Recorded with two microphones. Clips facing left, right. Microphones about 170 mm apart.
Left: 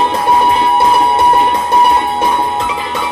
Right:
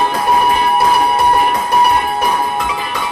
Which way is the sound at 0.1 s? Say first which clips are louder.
Left 2 dB; 25° left (ahead or behind).